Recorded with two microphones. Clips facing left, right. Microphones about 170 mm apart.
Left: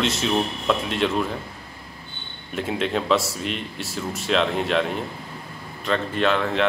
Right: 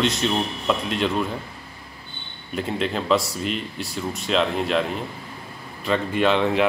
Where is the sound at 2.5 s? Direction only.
Centre (ahead or behind).